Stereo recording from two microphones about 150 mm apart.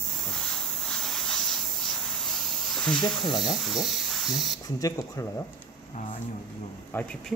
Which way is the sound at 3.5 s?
Centre (ahead or behind).